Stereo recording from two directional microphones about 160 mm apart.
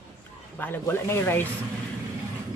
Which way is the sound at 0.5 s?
10° left (ahead or behind).